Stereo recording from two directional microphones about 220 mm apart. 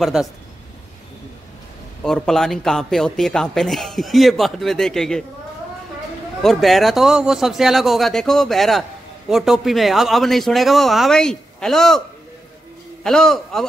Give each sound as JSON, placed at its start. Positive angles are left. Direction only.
{"t": 0.0, "sound": "speech", "side_deg": 0}
{"t": 2.0, "sound": "speech", "side_deg": 5}
{"t": 6.4, "sound": "speech", "side_deg": 0}
{"t": 13.0, "sound": "speech", "side_deg": 0}